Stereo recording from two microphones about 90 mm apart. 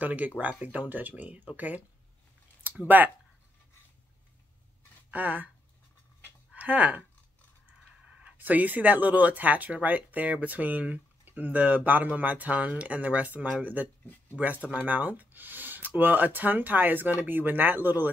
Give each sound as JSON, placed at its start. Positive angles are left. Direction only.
{"t": 0.0, "sound": "speech", "side_deg": -15}
{"t": 2.6, "sound": "speech", "side_deg": -15}
{"t": 5.1, "sound": "speech", "side_deg": -20}
{"t": 6.5, "sound": "speech", "side_deg": -15}
{"t": 8.2, "sound": "speech", "side_deg": -20}